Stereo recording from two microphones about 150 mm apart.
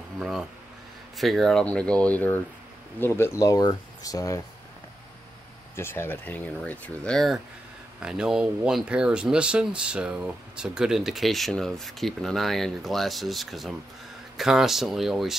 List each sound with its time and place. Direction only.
0.2 s speech: 5° right (ahead or behind); by 4.4 s 25° left (ahead or behind)
5.8 s speech: 15° left (ahead or behind); by 15.3 s centre (ahead or behind)